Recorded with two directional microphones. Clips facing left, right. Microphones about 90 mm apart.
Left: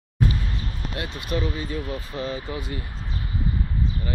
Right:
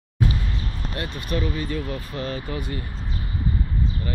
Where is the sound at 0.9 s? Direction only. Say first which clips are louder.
Even; 15° left (ahead or behind).